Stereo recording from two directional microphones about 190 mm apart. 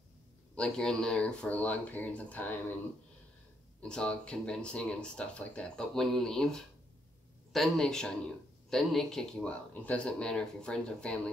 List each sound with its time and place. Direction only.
0.6 s speech: 5° left (ahead or behind)
3.8 s speech: 5° left (ahead or behind)